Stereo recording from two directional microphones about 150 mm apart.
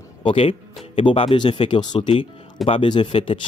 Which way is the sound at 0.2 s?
35° left (ahead or behind).